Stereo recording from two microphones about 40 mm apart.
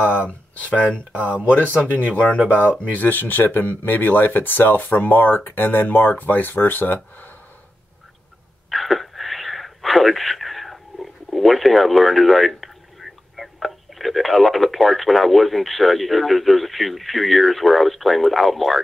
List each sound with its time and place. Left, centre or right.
0.0 s a sound: right
0.3 s speech: left
1.1 s speech: right
2.6 s speech: left
8.6 s speech: centre